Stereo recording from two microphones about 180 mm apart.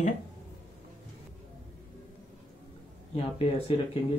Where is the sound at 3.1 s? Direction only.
30° left (ahead or behind).